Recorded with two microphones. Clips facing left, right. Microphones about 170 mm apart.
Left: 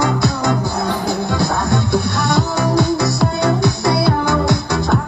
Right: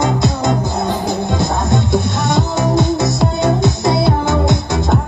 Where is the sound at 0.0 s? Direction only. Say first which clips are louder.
Right 1 dB; 20° right (ahead or behind).